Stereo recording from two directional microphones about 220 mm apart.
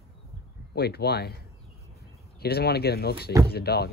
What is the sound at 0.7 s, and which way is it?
Speech, 45° left (ahead or behind).